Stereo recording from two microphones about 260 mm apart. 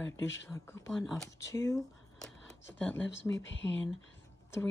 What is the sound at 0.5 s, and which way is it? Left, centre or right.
Speech, centre.